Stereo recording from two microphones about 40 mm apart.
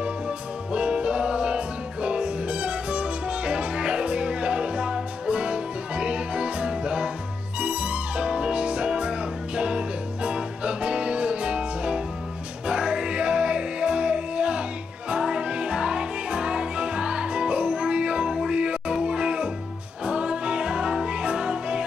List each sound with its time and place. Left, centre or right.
0.7 s music: right